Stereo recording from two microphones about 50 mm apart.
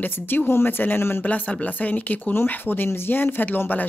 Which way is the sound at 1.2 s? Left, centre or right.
Left.